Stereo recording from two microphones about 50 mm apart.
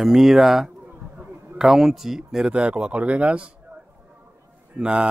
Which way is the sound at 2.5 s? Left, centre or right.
Right.